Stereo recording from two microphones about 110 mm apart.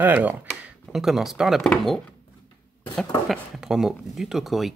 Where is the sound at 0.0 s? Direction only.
15° right (ahead or behind).